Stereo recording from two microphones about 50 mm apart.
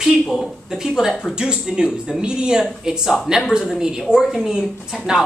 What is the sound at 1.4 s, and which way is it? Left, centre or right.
Speech, centre.